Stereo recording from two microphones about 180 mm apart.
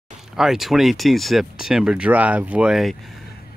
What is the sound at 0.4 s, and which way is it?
Speech, centre (ahead or behind).